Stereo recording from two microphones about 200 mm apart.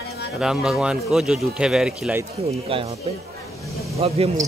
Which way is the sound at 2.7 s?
25° right (ahead or behind).